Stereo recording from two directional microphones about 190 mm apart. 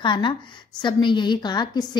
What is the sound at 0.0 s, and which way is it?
A woman's voice, 25° left (ahead or behind).